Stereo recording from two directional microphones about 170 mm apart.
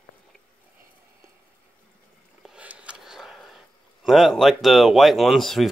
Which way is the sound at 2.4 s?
5° right (ahead or behind).